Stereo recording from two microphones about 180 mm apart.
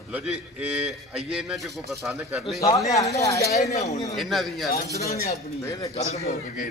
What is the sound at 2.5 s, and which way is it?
Speech, 20° left (ahead or behind).